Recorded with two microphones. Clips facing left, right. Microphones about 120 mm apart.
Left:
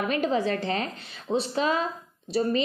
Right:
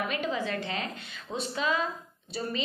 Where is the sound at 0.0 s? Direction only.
40° left (ahead or behind).